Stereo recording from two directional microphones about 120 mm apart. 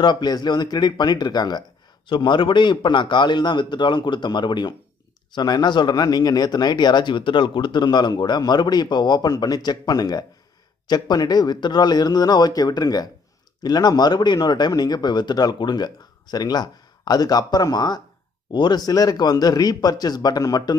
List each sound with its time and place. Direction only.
0.0 s speech: 35° left (ahead or behind)